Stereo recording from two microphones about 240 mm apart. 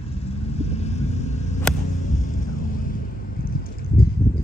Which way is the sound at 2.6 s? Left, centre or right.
Left.